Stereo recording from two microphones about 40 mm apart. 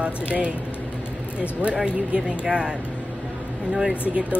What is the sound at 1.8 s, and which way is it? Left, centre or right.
Speech, right.